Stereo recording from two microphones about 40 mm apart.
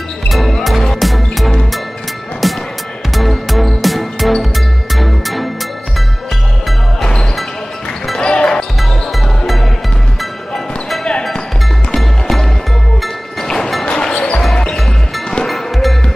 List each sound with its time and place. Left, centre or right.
0.3 s music: centre
8.2 s basketball bounce: left
11.9 s music: centre
13.4 s music: centre
15.4 s music: centre